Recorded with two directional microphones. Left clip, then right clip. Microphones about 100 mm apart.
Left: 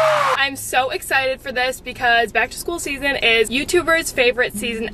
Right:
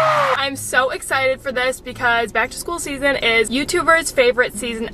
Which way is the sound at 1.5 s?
15° right (ahead or behind).